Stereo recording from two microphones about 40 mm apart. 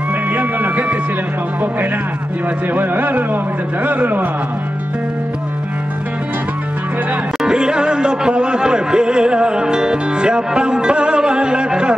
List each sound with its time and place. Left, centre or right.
0.3 s music: right
2.7 s speech: right
7.4 s music: right